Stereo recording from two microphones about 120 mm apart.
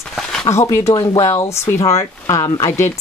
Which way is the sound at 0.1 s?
5° left (ahead or behind).